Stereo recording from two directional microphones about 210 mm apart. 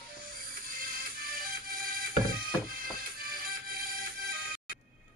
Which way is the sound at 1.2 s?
45° right (ahead or behind).